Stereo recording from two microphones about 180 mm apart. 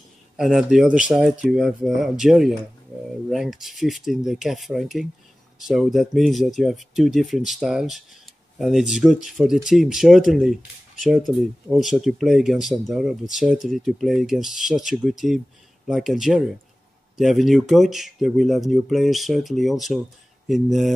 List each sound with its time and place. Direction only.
0.4 s speech: centre (ahead or behind)